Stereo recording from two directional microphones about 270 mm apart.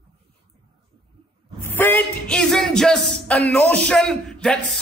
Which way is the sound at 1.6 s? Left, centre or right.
Centre.